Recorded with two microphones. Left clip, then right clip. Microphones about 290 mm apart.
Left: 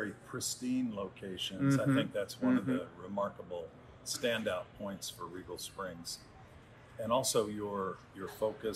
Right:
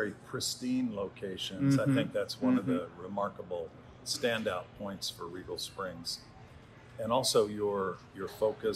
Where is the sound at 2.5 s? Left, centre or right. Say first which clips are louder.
Right 2 dB; right.